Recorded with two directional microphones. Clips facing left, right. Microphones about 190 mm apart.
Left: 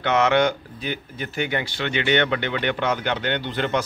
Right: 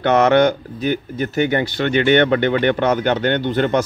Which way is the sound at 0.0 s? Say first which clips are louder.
Right 6 dB; 45° right (ahead or behind).